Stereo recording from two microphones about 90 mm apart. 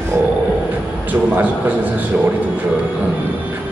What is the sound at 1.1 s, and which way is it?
Speech, 20° right (ahead or behind).